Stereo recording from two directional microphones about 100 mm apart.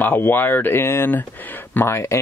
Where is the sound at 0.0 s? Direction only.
20° left (ahead or behind).